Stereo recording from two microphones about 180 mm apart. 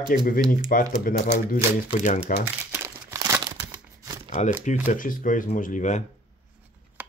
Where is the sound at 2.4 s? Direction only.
15° right (ahead or behind).